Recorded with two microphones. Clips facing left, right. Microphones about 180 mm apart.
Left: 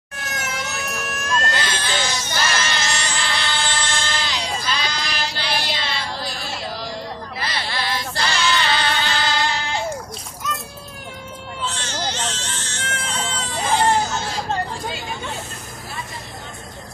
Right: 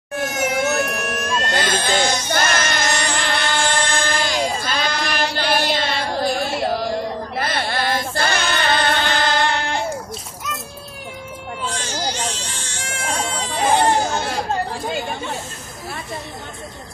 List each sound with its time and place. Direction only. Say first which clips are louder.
0.2 s a sound: right 9 dB; 55° right (ahead or behind)
11.6 s baby cry: right 1 dB; 10° right (ahead or behind)
13.7 s hubbub: left 2 dB; 60° right (ahead or behind)